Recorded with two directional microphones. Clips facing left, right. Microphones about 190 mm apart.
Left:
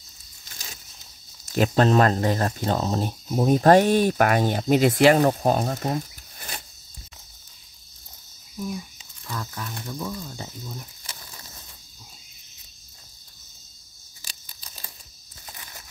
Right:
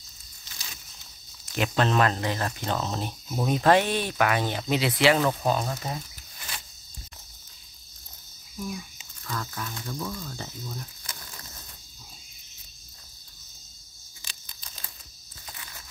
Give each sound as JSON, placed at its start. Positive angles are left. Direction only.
{"t": 1.4, "sound": "speech", "side_deg": 40}
{"t": 9.2, "sound": "speech", "side_deg": 5}
{"t": 14.2, "sound": "tearing", "side_deg": 35}